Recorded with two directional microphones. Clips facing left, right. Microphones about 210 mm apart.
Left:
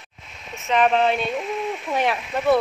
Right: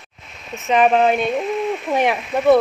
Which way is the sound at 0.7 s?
15° right (ahead or behind).